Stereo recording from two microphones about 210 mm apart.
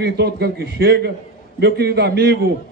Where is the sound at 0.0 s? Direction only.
50° right (ahead or behind).